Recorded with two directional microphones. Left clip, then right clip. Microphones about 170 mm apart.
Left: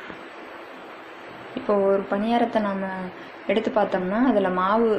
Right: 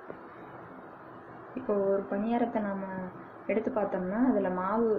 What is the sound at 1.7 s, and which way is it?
A woman's voice, 10° left (ahead or behind).